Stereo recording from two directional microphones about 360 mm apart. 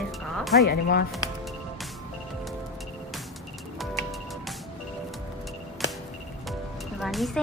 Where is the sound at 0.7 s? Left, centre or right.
Left.